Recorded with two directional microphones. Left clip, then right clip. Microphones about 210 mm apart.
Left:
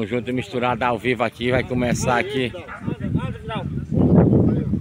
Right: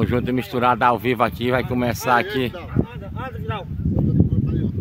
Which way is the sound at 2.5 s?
35° right (ahead or behind).